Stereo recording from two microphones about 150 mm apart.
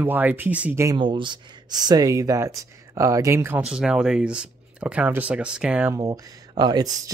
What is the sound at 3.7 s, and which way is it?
Speech, 5° right (ahead or behind).